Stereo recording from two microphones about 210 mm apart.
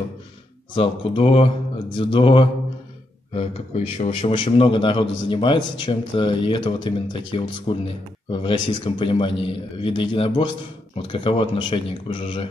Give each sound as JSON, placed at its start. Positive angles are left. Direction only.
{"t": 0.7, "sound": "a man's voice", "side_deg": 25}